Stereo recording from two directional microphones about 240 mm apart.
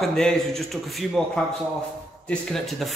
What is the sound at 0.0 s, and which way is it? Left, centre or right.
Speech, centre.